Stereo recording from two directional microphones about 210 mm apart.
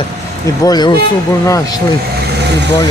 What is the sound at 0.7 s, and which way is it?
Speech, 20° left (ahead or behind).